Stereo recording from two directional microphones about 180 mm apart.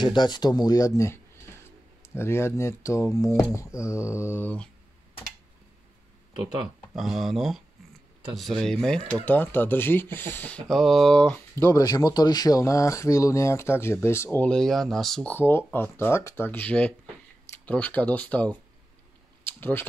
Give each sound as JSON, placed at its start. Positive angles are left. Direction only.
{"t": 0.0, "sound": "speech", "side_deg": 25}
{"t": 7.0, "sound": "speech", "side_deg": 0}
{"t": 19.4, "sound": "a sound", "side_deg": 10}